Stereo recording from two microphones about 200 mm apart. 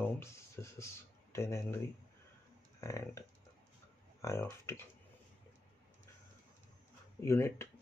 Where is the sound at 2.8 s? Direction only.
15° left (ahead or behind).